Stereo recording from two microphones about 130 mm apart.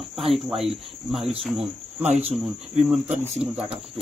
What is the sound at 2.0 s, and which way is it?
Speech, 55° right (ahead or behind).